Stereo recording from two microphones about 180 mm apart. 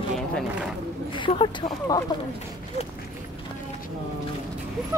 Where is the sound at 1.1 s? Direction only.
25° left (ahead or behind).